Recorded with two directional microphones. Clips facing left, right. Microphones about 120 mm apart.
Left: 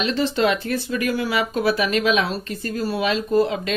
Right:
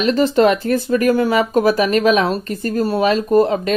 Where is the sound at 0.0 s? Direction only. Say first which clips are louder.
Right 7 dB; 45° right (ahead or behind).